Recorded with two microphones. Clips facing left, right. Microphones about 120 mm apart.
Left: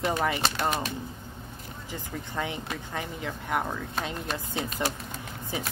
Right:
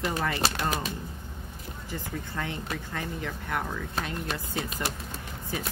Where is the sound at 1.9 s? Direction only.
20° left (ahead or behind).